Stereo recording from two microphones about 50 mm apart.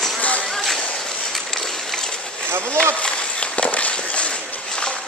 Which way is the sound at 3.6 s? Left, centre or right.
Left.